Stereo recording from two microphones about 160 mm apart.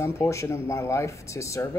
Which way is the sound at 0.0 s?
20° left (ahead or behind).